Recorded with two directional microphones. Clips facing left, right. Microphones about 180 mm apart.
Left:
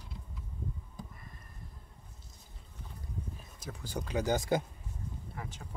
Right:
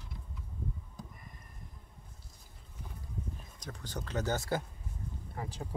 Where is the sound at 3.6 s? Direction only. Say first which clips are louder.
Left 4 dB; 5° left (ahead or behind).